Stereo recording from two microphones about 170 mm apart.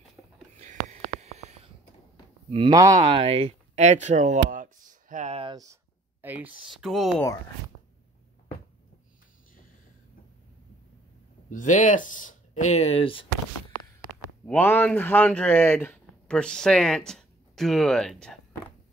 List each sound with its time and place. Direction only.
0.6 s a sound: 45° right (ahead or behind)
2.5 s speech: 25° right (ahead or behind)
6.2 s speech: 10° right (ahead or behind)
11.5 s speech: 50° left (ahead or behind); by 13.3 s 30° left (ahead or behind)
14.4 s speech: 10° left (ahead or behind)